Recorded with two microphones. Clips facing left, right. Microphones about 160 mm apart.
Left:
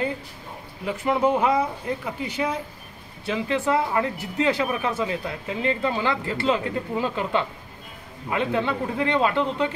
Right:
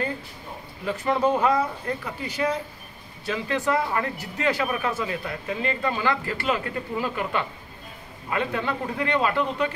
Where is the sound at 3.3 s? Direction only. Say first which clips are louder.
Left 2 dB; 20° left (ahead or behind).